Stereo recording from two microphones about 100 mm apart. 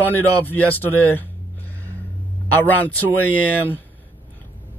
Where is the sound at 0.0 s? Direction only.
20° left (ahead or behind).